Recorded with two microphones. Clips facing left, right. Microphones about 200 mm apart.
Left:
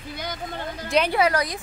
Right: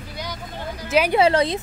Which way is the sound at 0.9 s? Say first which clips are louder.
Right 2 dB; 5° right (ahead or behind).